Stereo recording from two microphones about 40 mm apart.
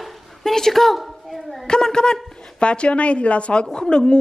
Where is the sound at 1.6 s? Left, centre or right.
Centre.